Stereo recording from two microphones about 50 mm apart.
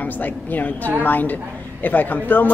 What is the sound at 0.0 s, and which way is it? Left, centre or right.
A woman's voice, left.